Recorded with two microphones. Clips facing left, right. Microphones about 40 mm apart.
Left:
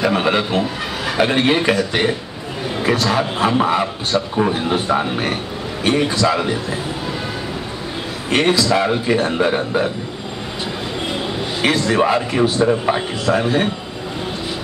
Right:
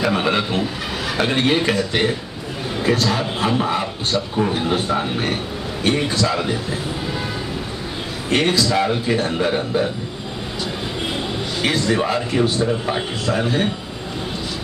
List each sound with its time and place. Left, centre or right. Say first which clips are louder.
0.0 s a man's voice: left 2 dB; centre
8.3 s a man's voice: left 2 dB; centre
11.7 s speech: left 1 dB; centre
12.0 s a man's voice: left 3 dB; centre
12.9 s a man's voice: left 3 dB; centre